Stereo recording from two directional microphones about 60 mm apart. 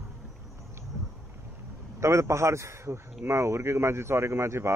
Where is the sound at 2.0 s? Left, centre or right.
Right.